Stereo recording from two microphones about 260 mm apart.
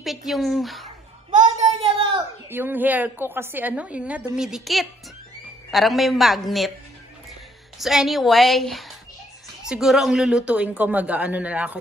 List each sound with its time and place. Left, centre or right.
0.0 s speech: centre
1.6 s a sound: right
2.5 s a woman's voice: centre
7.8 s speech: centre